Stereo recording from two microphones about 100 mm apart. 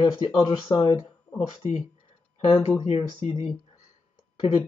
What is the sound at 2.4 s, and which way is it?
Speech, 60° left (ahead or behind).